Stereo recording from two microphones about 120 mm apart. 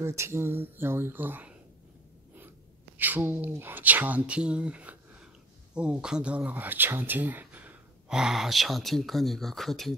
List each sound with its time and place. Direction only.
0.0 s speech: 20° right (ahead or behind)
3.0 s speech: 15° right (ahead or behind); by 9.9 s centre (ahead or behind)